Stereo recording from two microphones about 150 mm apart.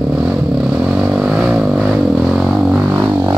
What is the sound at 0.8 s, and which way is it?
Vehicle, 5° right (ahead or behind).